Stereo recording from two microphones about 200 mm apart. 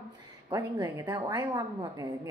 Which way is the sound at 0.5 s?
20° right (ahead or behind).